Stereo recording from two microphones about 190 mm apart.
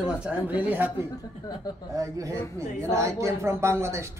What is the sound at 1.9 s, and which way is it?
Speech, 15° right (ahead or behind).